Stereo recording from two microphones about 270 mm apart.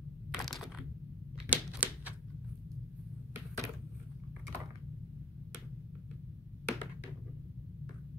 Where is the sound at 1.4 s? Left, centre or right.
Centre.